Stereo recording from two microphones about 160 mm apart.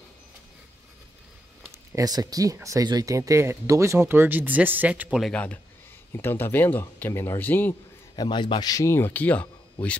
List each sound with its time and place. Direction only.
1.7 s speech: 20° right (ahead or behind)
5.3 s speech: 10° left (ahead or behind)
8.2 s speech: 30° left (ahead or behind); by 9.9 s 10° left (ahead or behind)